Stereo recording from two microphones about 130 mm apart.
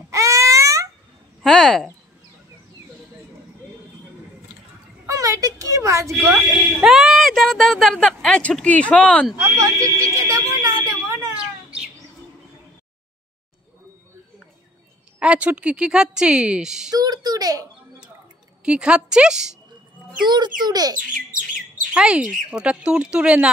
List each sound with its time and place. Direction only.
0.1 s a sound: 25° right (ahead or behind)
1.4 s a sound: 5° left (ahead or behind)
5.0 s a sound: 25° right (ahead or behind)
6.3 s speech: centre (ahead or behind)
9.4 s a sound: 25° right (ahead or behind)
11.3 s bird: 5° right (ahead or behind)
15.1 s a woman's voice: 10° right (ahead or behind)
16.9 s speech: 30° right (ahead or behind)
18.6 s a woman's voice: 5° right (ahead or behind)
20.2 s speech: 35° right (ahead or behind)
21.1 s bird: 90° right
21.9 s a woman's voice: 10° right (ahead or behind)